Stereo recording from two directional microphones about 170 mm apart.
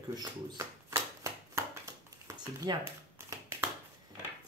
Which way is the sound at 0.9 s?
15° right (ahead or behind).